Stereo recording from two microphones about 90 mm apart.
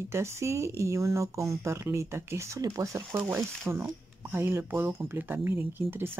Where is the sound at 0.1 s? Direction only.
30° right (ahead or behind).